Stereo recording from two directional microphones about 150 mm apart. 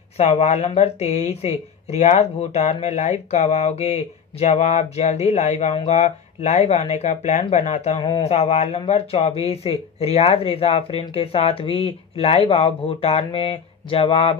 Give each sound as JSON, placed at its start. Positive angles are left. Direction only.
{"t": 0.2, "sound": "speech", "side_deg": 45}
{"t": 8.0, "sound": "speech", "side_deg": 35}